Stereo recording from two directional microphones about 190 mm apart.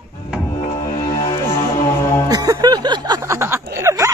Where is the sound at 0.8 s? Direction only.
20° left (ahead or behind).